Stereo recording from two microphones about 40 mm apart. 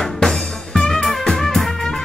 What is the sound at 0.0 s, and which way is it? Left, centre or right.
Music, centre.